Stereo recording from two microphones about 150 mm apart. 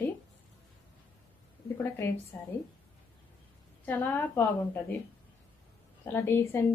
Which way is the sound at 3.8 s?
15° left (ahead or behind).